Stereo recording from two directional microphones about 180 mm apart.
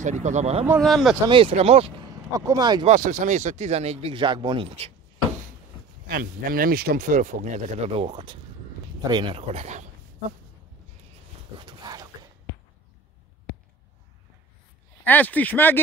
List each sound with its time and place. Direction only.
0.0 s speech: 40° right (ahead or behind)
0.8 s speech: centre (ahead or behind)
1.3 s speech: 30° right (ahead or behind)
2.0 s speech: 20° right (ahead or behind)
2.9 s speech: 45° right (ahead or behind)
6.0 s speech: 55° right (ahead or behind); by 9.8 s 40° right (ahead or behind)
11.6 s a sound: 20° right (ahead or behind)
15.0 s speech: 10° left (ahead or behind)